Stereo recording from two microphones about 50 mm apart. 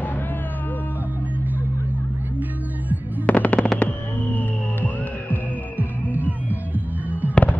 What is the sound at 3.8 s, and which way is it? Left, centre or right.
Hum, left.